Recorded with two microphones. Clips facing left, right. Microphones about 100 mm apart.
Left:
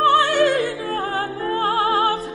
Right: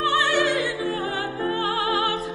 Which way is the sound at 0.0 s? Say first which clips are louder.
Left 6 dB; 45° left (ahead or behind).